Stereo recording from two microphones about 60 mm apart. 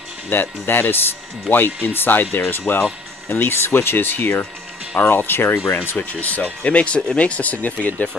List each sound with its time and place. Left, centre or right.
0.3 s speech: left
5.9 s speech: left